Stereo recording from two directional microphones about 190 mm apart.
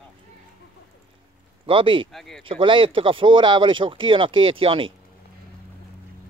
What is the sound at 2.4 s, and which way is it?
Speech, 25° right (ahead or behind).